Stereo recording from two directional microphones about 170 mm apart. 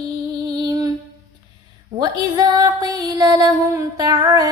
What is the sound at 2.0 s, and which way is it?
Music, 20° right (ahead or behind).